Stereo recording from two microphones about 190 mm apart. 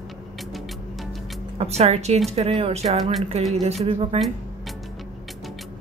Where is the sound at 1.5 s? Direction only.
35° right (ahead or behind).